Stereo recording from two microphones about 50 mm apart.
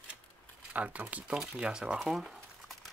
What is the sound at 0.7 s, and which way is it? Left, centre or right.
Speech, right.